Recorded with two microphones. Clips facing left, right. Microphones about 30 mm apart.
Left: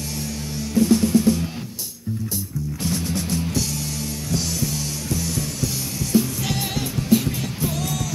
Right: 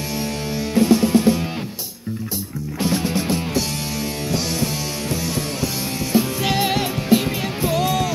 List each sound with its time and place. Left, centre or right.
0.7 s music: right
2.8 s music: right
5.1 s music: right